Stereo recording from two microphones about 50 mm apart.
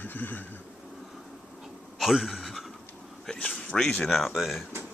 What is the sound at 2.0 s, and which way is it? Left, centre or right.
Speech, centre.